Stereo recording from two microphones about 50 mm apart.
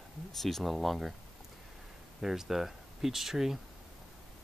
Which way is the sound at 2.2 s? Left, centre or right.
Centre.